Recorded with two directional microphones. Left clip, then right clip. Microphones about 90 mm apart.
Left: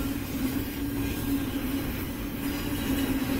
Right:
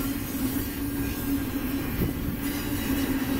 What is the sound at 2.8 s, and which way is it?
Vehicle, 5° right (ahead or behind).